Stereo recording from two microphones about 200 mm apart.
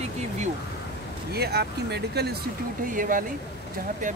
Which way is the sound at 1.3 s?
55° right (ahead or behind).